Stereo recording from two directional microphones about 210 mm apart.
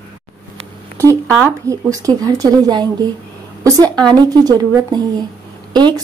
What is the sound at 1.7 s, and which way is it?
A woman's voice, 15° right (ahead or behind).